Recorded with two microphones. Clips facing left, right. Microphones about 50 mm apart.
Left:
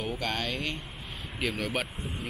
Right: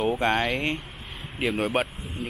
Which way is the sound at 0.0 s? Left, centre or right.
Right.